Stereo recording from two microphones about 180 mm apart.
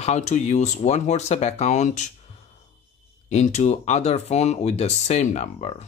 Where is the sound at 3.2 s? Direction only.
40° left (ahead or behind).